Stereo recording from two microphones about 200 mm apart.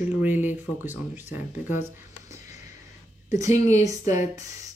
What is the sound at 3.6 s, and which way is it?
Speech, 15° right (ahead or behind).